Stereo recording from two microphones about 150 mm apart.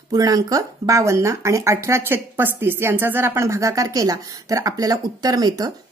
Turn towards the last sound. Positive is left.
turn(degrees=-25)  # may be behind; listen again after turning